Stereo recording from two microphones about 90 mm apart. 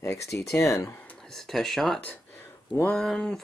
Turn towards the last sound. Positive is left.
turn(degrees=5)  # may be behind; listen again after turning